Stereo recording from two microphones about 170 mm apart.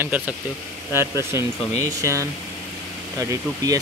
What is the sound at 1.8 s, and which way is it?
Speech, 15° right (ahead or behind).